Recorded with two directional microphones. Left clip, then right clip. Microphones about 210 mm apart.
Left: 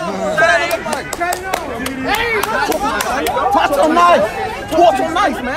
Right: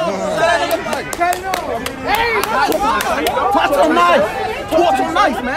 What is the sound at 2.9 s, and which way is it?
Chatter, 20° left (ahead or behind).